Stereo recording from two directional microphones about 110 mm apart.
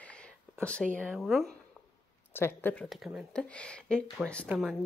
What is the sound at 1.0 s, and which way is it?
Speech, 5° right (ahead or behind).